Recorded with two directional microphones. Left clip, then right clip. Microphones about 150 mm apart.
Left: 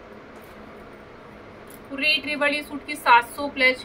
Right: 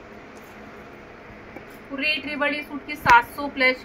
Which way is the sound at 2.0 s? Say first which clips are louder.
Left 2 dB; 20° left (ahead or behind).